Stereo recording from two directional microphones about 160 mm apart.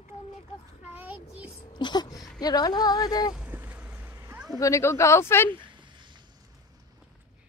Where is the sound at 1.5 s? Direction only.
30° left (ahead or behind).